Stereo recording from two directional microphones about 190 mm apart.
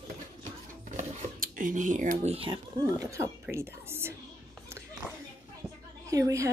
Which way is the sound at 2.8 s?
15° right (ahead or behind).